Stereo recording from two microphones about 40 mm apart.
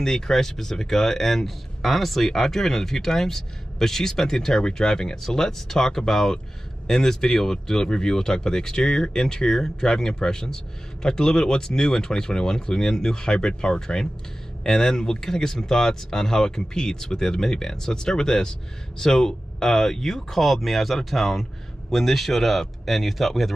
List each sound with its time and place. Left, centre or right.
0.0 s speech: centre